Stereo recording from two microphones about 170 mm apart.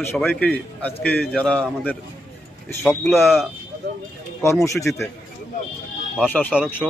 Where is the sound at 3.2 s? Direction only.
Centre (ahead or behind).